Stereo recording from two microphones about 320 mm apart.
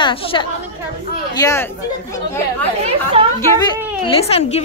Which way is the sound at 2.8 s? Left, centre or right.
Centre.